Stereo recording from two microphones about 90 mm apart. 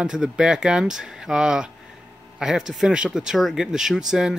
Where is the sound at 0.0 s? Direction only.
5° right (ahead or behind).